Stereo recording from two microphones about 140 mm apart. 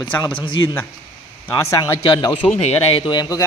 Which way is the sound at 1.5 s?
25° left (ahead or behind).